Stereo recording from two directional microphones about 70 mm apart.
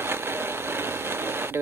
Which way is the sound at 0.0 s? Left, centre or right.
Right.